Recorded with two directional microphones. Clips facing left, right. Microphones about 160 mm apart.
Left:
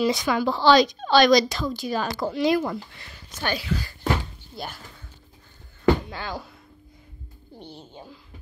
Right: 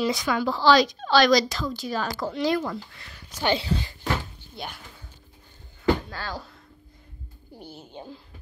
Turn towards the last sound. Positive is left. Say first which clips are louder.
# left 1 dB
turn(degrees=-5)  # may be behind; listen again after turning